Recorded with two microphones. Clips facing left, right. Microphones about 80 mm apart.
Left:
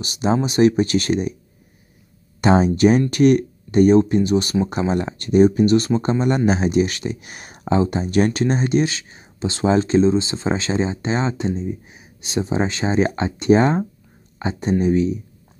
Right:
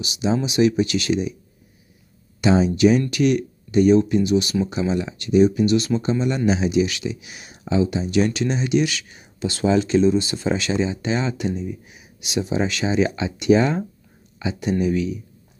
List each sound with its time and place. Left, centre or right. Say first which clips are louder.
0.0 s speech: left 2 dB; left
2.4 s speech: left 2 dB; left